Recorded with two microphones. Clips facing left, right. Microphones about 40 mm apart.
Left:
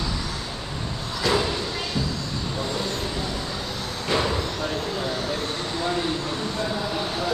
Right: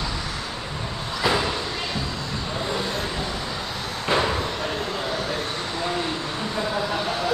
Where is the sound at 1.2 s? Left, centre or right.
Centre.